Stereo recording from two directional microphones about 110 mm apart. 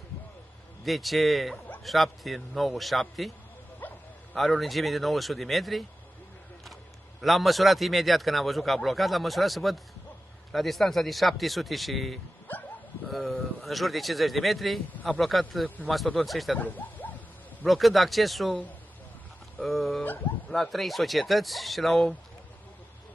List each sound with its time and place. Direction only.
0.8 s a man's voice: centre (ahead or behind)
3.8 s bow-wow: 15° left (ahead or behind)
4.3 s a man's voice: centre (ahead or behind)
7.2 s a man's voice: centre (ahead or behind)
16.5 s a sound: 15° left (ahead or behind)
17.6 s a man's voice: centre (ahead or behind)
19.6 s a man's voice: centre (ahead or behind)
20.0 s speech: 10° left (ahead or behind)
20.5 s a man's voice: centre (ahead or behind)